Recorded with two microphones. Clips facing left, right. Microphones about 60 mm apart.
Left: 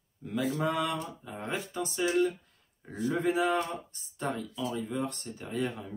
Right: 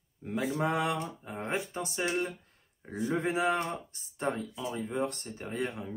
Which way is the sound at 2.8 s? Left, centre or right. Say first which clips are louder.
Left 2 dB; right.